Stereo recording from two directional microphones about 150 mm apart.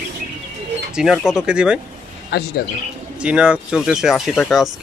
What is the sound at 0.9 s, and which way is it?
Speech, 5° right (ahead or behind).